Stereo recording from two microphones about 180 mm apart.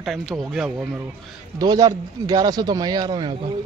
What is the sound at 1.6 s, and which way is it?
Speech, 20° right (ahead or behind).